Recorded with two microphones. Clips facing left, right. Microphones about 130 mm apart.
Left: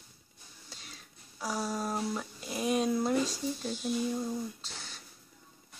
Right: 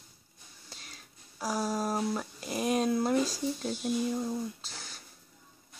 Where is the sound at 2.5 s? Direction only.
Centre (ahead or behind).